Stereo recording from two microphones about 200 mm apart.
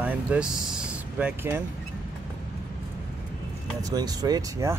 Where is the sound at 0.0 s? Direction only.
5° right (ahead or behind).